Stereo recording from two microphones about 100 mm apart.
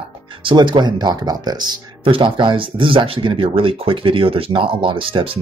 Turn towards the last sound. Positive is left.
turn(degrees=-60)  # may be behind; listen again after turning